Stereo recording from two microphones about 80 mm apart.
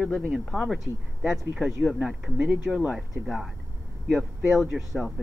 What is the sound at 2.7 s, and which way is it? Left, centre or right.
Speech, centre.